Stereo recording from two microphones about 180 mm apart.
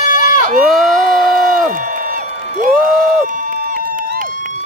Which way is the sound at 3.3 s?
50° right (ahead or behind).